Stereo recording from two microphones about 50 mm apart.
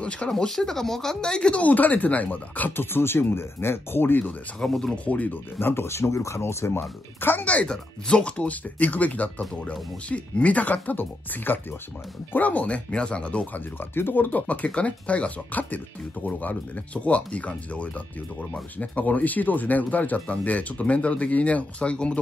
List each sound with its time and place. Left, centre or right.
0.5 s speech: centre; by 2.7 s left
2.7 s speech: left
4.6 s speech: centre
4.9 s speech: left
5.6 s speech: left
7.2 s speech: left
7.6 s speech: centre
13.7 s speech: left